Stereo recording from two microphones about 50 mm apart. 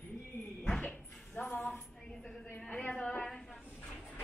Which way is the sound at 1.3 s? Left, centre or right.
Left.